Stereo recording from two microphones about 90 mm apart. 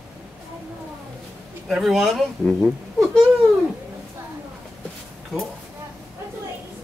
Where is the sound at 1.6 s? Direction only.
5° right (ahead or behind).